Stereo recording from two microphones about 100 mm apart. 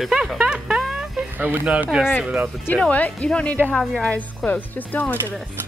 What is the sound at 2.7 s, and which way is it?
Speech, 15° left (ahead or behind).